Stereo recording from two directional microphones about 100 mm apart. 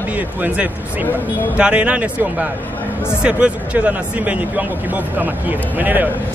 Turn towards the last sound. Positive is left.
turn(degrees=-20)  # may be behind; listen again after turning